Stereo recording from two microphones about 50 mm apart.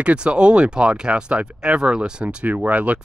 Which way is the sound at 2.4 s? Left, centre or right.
Right.